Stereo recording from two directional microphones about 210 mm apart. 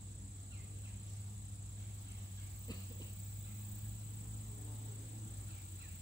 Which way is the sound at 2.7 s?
20° left (ahead or behind).